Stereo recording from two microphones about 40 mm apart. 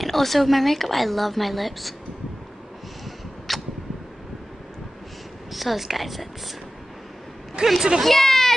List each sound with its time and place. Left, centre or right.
0.0 s a woman's voice: centre
3.5 s a sound: centre
5.5 s a woman's voice: centre
7.6 s a woman's voice: right
8.0 s children playing: centre